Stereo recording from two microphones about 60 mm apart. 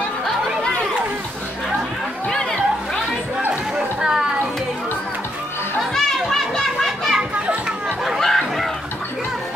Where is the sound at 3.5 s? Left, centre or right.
Centre.